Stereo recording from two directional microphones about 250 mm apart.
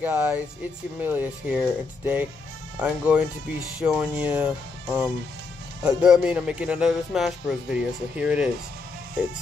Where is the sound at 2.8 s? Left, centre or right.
Centre.